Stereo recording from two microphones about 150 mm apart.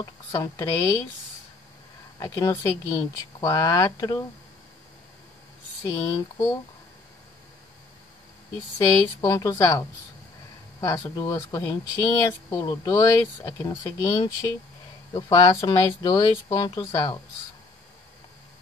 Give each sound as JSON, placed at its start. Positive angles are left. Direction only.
{"t": 0.0, "sound": "speech", "side_deg": 25}
{"t": 2.1, "sound": "speech", "side_deg": 25}
{"t": 6.0, "sound": "speech", "side_deg": 25}
{"t": 8.7, "sound": "speech", "side_deg": 20}